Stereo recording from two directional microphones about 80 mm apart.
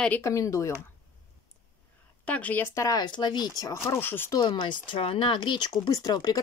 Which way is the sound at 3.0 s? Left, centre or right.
Left.